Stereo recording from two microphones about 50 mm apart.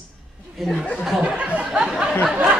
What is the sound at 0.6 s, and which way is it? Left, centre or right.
Speech, centre.